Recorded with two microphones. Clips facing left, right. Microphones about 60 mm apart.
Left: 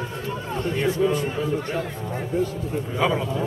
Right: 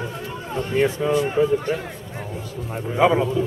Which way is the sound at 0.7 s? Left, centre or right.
Right.